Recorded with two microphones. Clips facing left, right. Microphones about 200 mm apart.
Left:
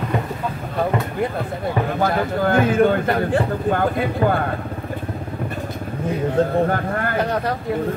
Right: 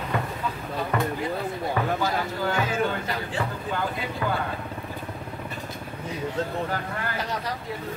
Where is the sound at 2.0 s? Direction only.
55° left (ahead or behind).